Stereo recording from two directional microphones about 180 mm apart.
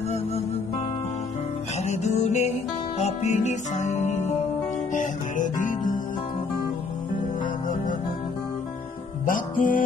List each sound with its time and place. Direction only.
1.9 s music: 40° left (ahead or behind)
4.9 s guitar: 45° left (ahead or behind)
9.2 s music: 50° left (ahead or behind)